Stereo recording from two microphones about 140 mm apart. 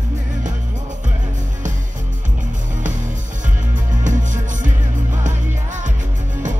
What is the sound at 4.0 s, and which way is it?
Music, 65° right (ahead or behind).